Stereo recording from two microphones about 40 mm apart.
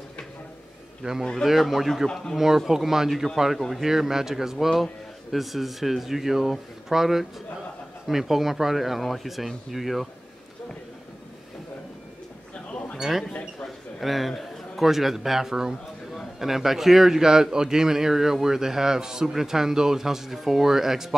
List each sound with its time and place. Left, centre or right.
1.0 s a man's voice: right
1.4 s a man's voice: centre
12.9 s a sound: centre
13.9 s a man's voice: centre